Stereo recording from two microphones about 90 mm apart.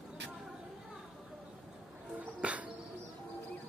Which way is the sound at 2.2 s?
15° right (ahead or behind).